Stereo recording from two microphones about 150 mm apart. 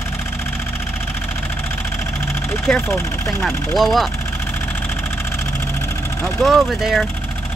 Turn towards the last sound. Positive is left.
turn(degrees=0)  # may be behind; listen again after turning